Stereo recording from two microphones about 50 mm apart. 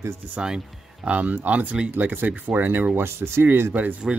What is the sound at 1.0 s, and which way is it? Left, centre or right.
Speech, right.